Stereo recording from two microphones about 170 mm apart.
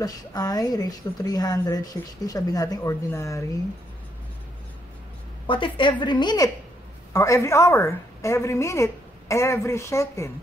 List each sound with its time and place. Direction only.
0.0 s speech: 20° left (ahead or behind)
5.5 s a woman's voice: 30° left (ahead or behind)